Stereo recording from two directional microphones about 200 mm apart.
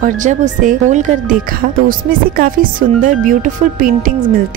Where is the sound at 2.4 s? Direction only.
45° right (ahead or behind).